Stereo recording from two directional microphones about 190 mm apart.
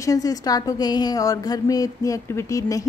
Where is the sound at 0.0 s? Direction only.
20° left (ahead or behind).